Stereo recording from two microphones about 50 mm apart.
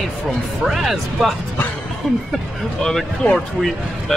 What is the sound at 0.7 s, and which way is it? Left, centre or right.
Speech, centre.